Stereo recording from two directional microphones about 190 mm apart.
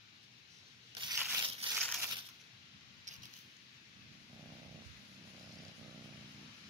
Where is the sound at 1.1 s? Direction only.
5° right (ahead or behind).